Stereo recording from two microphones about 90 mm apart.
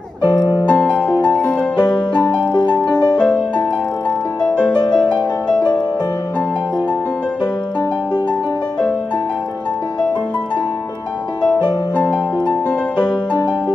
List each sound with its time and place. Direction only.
0.7 s music: 10° left (ahead or behind)
11.9 s music: 15° left (ahead or behind)